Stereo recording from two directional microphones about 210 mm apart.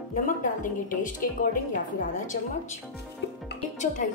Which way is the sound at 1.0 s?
40° left (ahead or behind).